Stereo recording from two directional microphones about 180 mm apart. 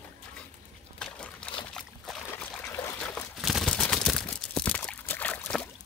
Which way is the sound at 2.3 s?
10° left (ahead or behind).